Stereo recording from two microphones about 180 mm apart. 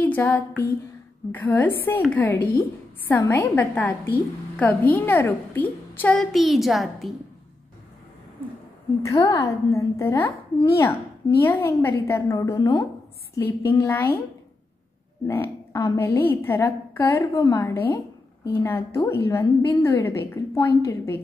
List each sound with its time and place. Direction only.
0.0 s a sound: 10° left (ahead or behind)
1.3 s a woman's voice: 10° left (ahead or behind)
9.1 s a woman's voice: 25° left (ahead or behind)
15.2 s a woman's voice: 15° left (ahead or behind)